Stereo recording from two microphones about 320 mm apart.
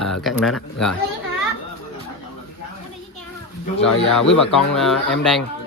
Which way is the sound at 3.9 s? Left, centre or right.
Left.